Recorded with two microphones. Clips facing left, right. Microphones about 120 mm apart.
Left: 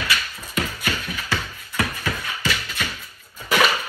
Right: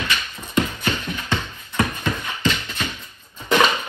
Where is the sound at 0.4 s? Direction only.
25° right (ahead or behind).